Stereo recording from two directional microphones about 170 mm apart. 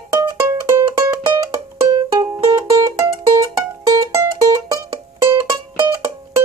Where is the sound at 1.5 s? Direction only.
20° right (ahead or behind).